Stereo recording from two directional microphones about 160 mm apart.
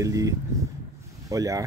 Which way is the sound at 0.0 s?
20° right (ahead or behind).